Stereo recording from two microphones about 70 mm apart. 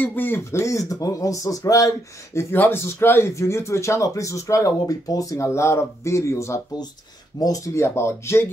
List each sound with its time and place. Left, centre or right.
0.0 s speech: left
0.5 s speech: left
2.3 s speech: left
7.3 s speech: left
7.8 s speech: left